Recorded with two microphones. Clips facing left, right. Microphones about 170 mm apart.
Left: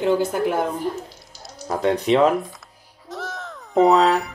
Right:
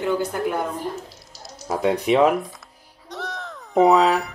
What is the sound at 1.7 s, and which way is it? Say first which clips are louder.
Speech: left 1 dB; 5° right (ahead or behind).